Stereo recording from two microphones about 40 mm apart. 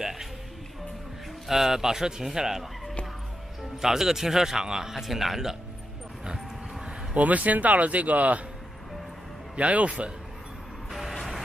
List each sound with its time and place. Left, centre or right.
0.0 s music: centre
1.5 s speech: centre
3.8 s a man's voice: centre
6.2 s dog: centre
7.2 s speech: right
9.6 s speech: right
10.9 s vehicle: centre